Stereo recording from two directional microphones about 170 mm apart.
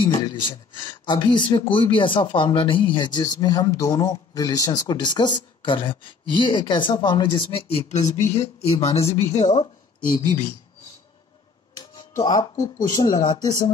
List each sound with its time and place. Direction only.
0.1 s a woman's voice: 25° left (ahead or behind); by 9.7 s 45° left (ahead or behind)
11.7 s music: 25° left (ahead or behind)
12.9 s speech: 25° left (ahead or behind)